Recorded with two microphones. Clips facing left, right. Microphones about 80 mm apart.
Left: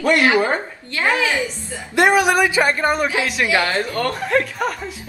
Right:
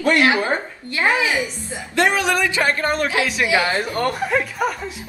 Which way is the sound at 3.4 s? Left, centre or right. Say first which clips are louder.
Left 1 dB; centre.